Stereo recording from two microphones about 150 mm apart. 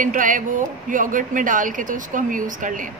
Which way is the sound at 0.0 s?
60° right (ahead or behind).